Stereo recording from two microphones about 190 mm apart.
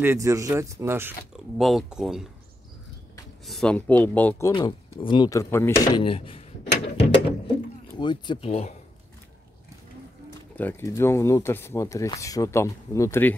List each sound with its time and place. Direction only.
0.0 s speech: 15° right (ahead or behind)
1.6 s speech: centre (ahead or behind)
3.4 s speech: 5° left (ahead or behind)
4.5 s speech: 25° left (ahead or behind)
5.9 s speech: 30° left (ahead or behind)
6.8 s gears: 30° left (ahead or behind)
8.0 s speech: 25° left (ahead or behind)
10.5 s speech: 10° left (ahead or behind)